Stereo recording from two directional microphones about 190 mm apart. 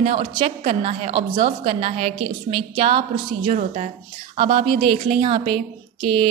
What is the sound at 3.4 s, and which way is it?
Speech, 40° right (ahead or behind).